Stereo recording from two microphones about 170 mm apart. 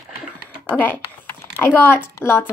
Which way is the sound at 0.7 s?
10° left (ahead or behind).